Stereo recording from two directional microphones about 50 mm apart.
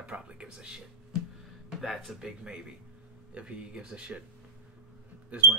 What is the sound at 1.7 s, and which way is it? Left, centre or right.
Speech, centre.